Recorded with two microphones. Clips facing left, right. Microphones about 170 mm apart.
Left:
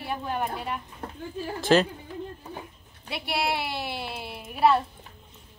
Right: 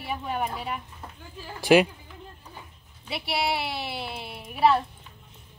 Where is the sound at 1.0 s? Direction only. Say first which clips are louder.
Left 5 dB; 60° left (ahead or behind).